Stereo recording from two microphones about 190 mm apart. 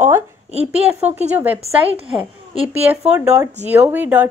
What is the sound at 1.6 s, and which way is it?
A woman's voice, 30° right (ahead or behind).